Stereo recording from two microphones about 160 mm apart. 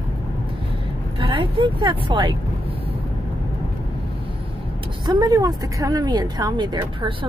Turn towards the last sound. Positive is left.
turn(degrees=-30)  # may be behind; listen again after turning